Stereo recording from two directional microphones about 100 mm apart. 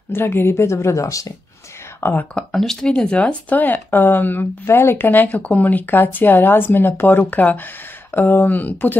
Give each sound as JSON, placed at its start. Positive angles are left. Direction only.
{"t": 0.1, "sound": "speech", "side_deg": 20}
{"t": 2.3, "sound": "speech", "side_deg": 5}